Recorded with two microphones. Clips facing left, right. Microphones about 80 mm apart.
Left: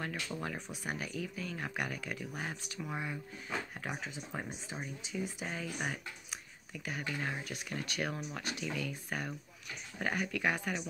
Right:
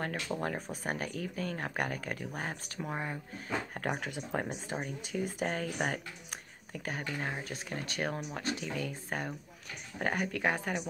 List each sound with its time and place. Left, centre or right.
0.0 s speech: right
2.9 s speech: right
3.4 s speech: right